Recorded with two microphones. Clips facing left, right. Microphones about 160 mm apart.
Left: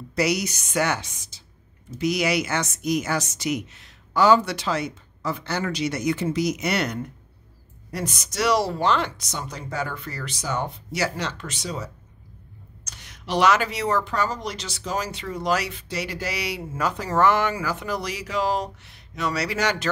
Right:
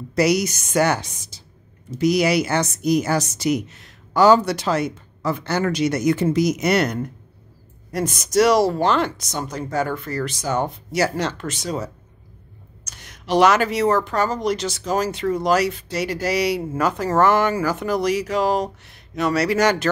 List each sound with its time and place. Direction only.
0.1 s a woman's voice: 40° right (ahead or behind)
13.0 s speech: 45° right (ahead or behind)